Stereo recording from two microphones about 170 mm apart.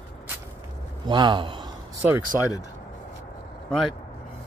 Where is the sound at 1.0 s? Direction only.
25° right (ahead or behind).